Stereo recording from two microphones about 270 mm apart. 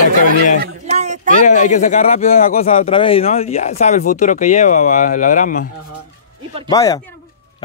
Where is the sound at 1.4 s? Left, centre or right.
Left.